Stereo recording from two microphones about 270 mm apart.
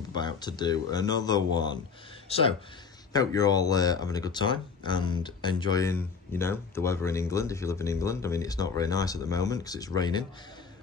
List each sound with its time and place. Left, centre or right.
0.1 s speech: centre